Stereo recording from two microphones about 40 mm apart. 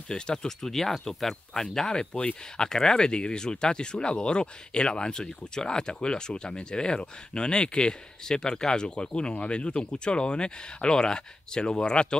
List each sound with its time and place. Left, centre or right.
0.1 s speech: centre